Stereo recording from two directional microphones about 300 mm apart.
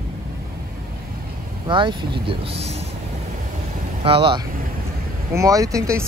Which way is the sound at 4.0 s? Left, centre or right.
Centre.